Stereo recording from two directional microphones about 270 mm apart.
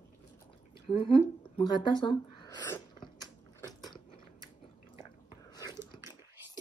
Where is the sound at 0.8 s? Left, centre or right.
Centre.